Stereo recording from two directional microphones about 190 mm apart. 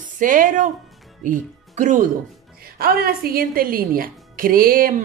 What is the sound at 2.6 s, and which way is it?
A woman's voice, 50° right (ahead or behind).